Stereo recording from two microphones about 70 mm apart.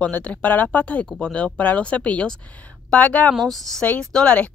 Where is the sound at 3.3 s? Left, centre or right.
Centre.